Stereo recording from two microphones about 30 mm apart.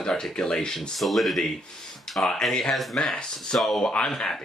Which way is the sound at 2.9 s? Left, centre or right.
Left.